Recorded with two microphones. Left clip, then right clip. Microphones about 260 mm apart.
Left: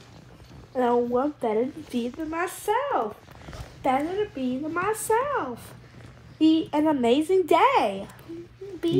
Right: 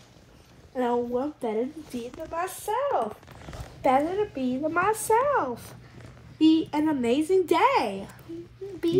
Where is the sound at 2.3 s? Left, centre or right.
Left.